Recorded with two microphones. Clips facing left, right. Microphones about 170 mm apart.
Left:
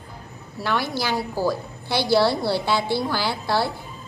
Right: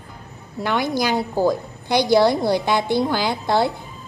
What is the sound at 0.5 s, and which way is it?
A child's voice, 20° right (ahead or behind).